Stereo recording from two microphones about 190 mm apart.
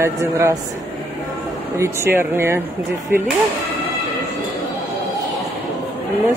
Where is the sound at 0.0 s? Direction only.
15° right (ahead or behind).